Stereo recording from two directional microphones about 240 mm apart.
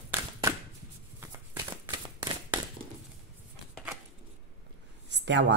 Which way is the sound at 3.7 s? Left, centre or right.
Centre.